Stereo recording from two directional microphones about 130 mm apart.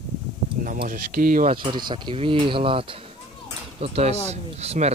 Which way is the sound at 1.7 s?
35° right (ahead or behind).